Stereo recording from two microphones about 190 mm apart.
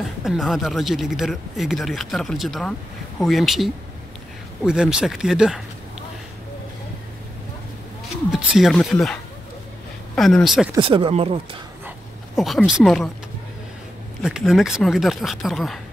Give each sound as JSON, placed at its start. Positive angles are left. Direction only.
{"t": 0.0, "sound": "speech", "side_deg": 0}
{"t": 8.3, "sound": "speech", "side_deg": 0}
{"t": 10.8, "sound": "speech", "side_deg": -30}
{"t": 12.4, "sound": "speech", "side_deg": 0}
{"t": 14.2, "sound": "speech", "side_deg": 0}